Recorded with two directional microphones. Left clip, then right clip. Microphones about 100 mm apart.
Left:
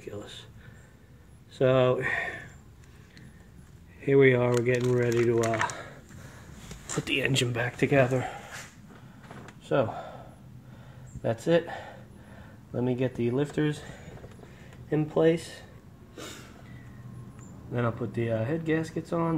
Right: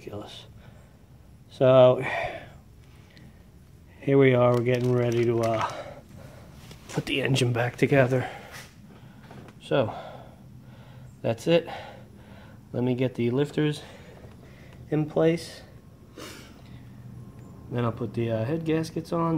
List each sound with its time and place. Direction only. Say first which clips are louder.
0.1 s a sound: right 2 dB; 35° right (ahead or behind)
1.6 s speech: right 6 dB; 40° right (ahead or behind)
4.0 s speech: right 2 dB; 35° right (ahead or behind)
5.2 s speech: right 1 dB; 25° right (ahead or behind)
7.1 s speech: right 1 dB; 35° right (ahead or behind)
7.4 s speech: right 3 dB; 55° right (ahead or behind)
7.7 s speech: right 1 dB; 35° right (ahead or behind)
9.7 s a sound: right 1 dB; 20° right (ahead or behind)
11.2 s speech: right 2 dB; 20° right (ahead or behind)
14.9 s speech: even; 20° right (ahead or behind)
17.7 s speech: right 1 dB; 25° right (ahead or behind)